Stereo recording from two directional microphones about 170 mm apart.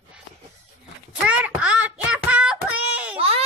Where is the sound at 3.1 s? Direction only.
35° right (ahead or behind).